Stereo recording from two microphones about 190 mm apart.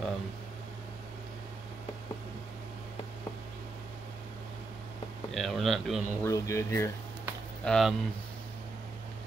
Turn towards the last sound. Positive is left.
turn(degrees=5)  # may be behind; listen again after turning